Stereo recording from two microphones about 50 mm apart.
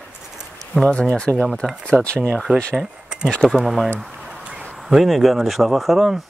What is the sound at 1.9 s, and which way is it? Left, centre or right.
Speech, centre.